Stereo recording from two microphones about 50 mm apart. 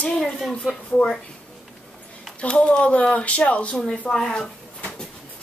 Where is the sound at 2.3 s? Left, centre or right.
Left.